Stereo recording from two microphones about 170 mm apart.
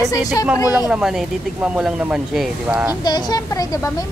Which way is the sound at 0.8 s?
5° right (ahead or behind).